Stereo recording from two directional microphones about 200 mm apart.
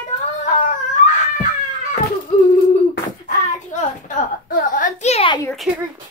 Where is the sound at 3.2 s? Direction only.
40° left (ahead or behind).